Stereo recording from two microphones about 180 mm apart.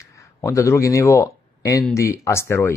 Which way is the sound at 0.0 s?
15° left (ahead or behind).